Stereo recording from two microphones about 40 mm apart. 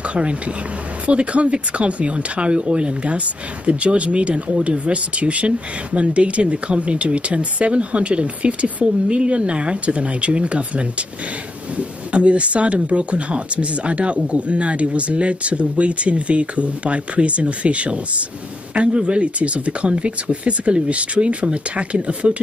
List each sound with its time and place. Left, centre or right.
0.1 s speech: right